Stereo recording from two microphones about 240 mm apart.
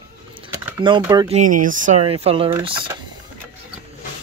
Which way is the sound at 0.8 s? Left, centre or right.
Centre.